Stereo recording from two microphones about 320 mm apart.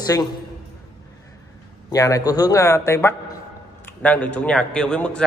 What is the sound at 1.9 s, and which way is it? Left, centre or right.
A man's voice, centre.